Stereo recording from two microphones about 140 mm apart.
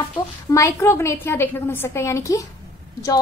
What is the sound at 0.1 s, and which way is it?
A woman's voice, 25° left (ahead or behind).